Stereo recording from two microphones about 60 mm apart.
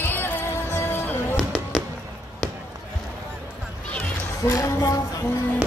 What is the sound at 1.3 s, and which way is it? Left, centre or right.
Basketball bounce, centre.